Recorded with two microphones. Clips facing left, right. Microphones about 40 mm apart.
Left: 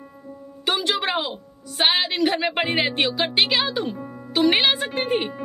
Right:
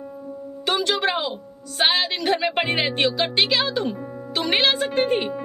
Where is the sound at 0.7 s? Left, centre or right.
Centre.